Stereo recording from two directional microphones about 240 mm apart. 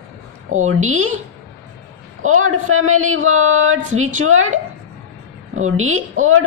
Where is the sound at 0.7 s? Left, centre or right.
Right.